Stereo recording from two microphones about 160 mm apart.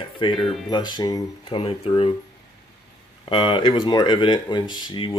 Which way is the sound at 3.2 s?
30° left (ahead or behind).